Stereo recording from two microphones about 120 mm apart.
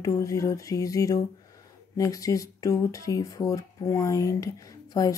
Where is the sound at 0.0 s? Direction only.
25° left (ahead or behind).